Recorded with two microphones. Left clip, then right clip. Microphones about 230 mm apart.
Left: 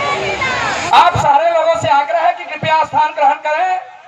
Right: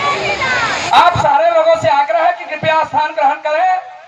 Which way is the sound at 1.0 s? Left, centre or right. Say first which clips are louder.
Even; left.